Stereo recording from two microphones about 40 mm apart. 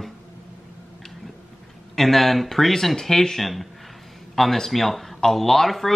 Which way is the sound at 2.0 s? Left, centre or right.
Centre.